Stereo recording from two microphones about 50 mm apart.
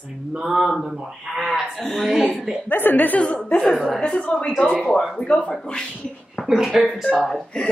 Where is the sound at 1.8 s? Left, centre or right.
Centre.